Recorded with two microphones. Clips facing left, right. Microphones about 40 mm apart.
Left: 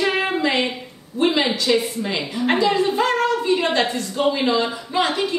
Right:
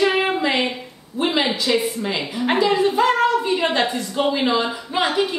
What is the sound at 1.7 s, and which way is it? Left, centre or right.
A woman's voice, centre.